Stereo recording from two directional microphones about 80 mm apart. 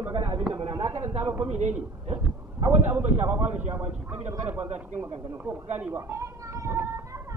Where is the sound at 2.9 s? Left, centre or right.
Right.